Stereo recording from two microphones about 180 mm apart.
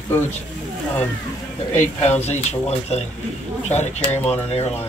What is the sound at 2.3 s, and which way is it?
Speech, 35° left (ahead or behind).